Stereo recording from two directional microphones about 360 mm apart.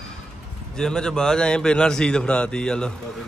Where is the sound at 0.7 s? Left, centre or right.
Centre.